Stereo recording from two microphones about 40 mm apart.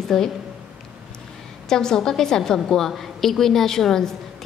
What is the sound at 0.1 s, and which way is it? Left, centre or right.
Speech, centre.